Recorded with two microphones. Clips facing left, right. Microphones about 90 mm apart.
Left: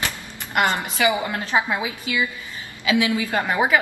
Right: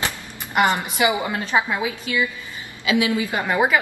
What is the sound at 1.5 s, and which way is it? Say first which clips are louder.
Speech: right 1 dB; 15° left (ahead or behind).